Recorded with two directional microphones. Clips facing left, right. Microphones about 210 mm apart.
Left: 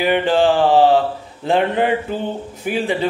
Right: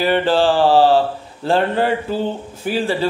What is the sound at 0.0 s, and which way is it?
Mantra, 15° left (ahead or behind).